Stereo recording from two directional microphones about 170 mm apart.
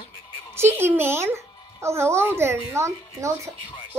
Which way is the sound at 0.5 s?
15° right (ahead or behind).